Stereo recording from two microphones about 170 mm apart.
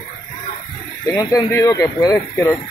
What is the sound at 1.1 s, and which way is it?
Speech, 20° left (ahead or behind).